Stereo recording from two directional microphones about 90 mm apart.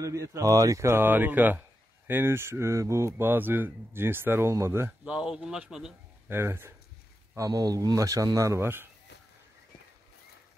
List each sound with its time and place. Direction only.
0.0 s speech: 35° right (ahead or behind)
5.0 s a man's voice: 10° right (ahead or behind)
6.2 s speech: 25° right (ahead or behind)
7.3 s speech: 40° right (ahead or behind)